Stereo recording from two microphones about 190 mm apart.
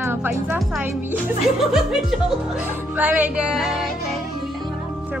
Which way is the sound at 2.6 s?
10° right (ahead or behind).